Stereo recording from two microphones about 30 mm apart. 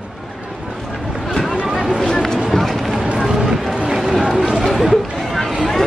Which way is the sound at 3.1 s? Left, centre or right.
Centre.